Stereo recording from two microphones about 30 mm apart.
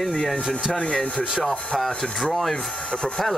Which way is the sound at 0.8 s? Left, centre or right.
Left.